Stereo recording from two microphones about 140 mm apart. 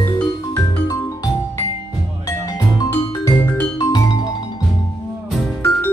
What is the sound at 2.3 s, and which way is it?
Music, 25° left (ahead or behind).